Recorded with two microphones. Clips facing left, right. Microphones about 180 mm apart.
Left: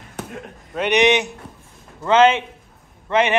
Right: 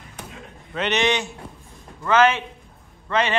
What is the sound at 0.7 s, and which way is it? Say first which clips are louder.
A man's voice: left 5 dB; 15° left (ahead or behind).